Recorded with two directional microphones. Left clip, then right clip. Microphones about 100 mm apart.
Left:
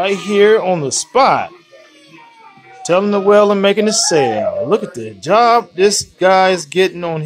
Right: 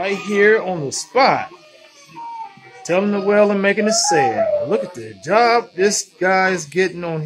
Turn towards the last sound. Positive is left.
turn(degrees=10)  # may be behind; listen again after turning